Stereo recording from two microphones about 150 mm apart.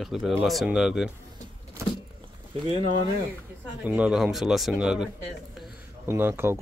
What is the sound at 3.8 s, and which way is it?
Speech, 5° right (ahead or behind).